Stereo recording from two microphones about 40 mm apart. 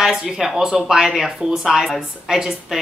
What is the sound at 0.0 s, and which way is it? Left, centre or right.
Speech, centre.